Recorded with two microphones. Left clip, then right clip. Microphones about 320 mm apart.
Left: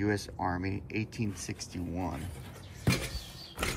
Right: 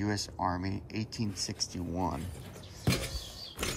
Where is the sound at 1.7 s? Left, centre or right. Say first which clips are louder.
Right 1 dB; right.